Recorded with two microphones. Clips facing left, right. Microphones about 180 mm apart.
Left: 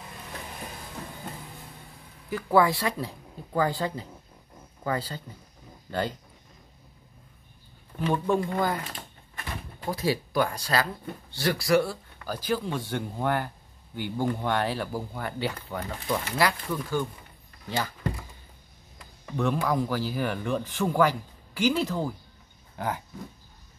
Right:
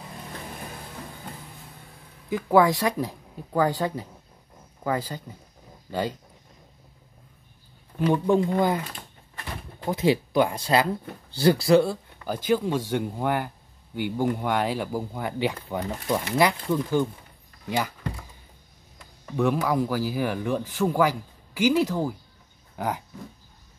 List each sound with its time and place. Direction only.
2.2 s speech: 15° right (ahead or behind)
8.0 s speech: 15° right (ahead or behind)
9.8 s speech: 20° right (ahead or behind)
19.3 s speech: 5° right (ahead or behind)